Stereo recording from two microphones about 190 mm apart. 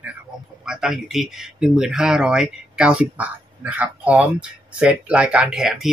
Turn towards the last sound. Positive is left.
turn(degrees=0)  # may be behind; listen again after turning